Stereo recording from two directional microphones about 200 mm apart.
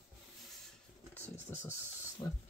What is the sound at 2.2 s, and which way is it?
Speech, 20° left (ahead or behind).